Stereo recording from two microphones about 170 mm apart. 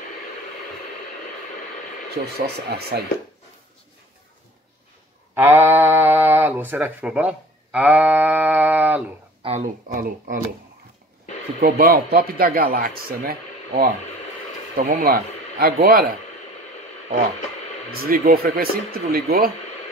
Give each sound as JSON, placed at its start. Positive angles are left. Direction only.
{"t": 2.4, "sound": "speech", "side_deg": -70}
{"t": 5.3, "sound": "a sound", "side_deg": -10}
{"t": 6.7, "sound": "speech", "side_deg": -10}
{"t": 9.4, "sound": "speech", "side_deg": -35}
{"t": 9.9, "sound": "speech", "side_deg": -55}
{"t": 11.6, "sound": "speech", "side_deg": -65}
{"t": 17.9, "sound": "speech", "side_deg": -60}